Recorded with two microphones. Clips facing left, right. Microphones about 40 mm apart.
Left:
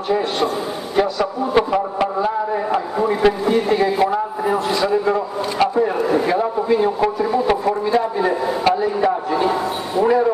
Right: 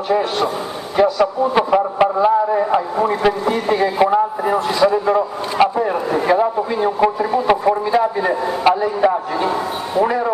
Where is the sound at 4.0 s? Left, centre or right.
Centre.